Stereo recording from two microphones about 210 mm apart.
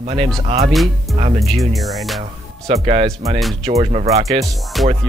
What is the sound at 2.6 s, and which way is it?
Music, 25° right (ahead or behind).